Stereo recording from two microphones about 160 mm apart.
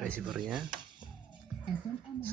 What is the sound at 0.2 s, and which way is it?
Speech, 5° right (ahead or behind).